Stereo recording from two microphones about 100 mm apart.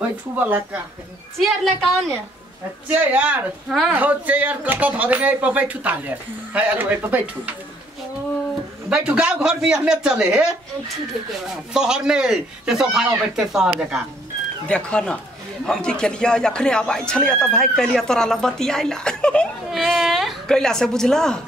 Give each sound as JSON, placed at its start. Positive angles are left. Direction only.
{"t": 0.4, "sound": "speech", "side_deg": -20}
{"t": 1.4, "sound": "a woman's voice", "side_deg": 0}
{"t": 2.9, "sound": "speech", "side_deg": -15}
{"t": 8.8, "sound": "speech", "side_deg": -10}
{"t": 11.7, "sound": "speech", "side_deg": -5}
{"t": 14.7, "sound": "speech", "side_deg": 10}